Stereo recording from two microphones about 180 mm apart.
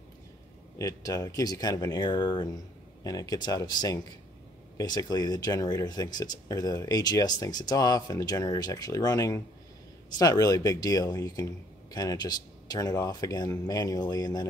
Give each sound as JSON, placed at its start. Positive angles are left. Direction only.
{"t": 0.7, "sound": "speech", "side_deg": 20}